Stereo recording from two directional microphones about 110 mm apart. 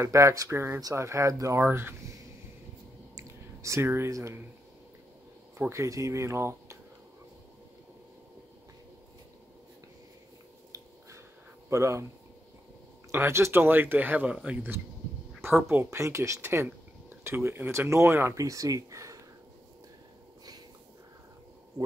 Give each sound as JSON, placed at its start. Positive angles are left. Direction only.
{"t": 0.0, "sound": "speech", "side_deg": -30}
{"t": 3.2, "sound": "a sound", "side_deg": -25}
{"t": 5.6, "sound": "speech", "side_deg": -25}
{"t": 11.7, "sound": "speech", "side_deg": -25}
{"t": 13.1, "sound": "speech", "side_deg": -20}
{"t": 15.8, "sound": "speech", "side_deg": -25}